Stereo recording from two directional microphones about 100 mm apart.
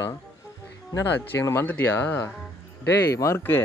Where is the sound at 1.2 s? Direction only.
20° left (ahead or behind).